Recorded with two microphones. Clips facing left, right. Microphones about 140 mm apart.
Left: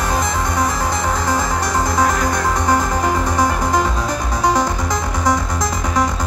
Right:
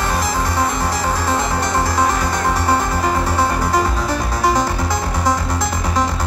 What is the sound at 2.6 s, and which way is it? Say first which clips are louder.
Music: left 1 dB; 15° left (ahead or behind).